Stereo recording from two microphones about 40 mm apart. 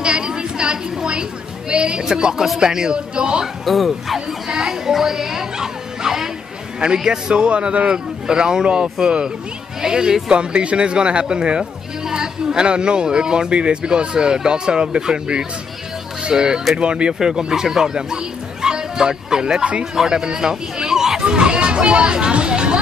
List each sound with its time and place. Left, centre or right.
0.0 s a sound: right
1.7 s speech: right
3.6 s speech: centre
4.5 s music: centre
7.0 s speech: centre
10.3 s speech: right
17.2 s speech: centre
21.2 s speech: right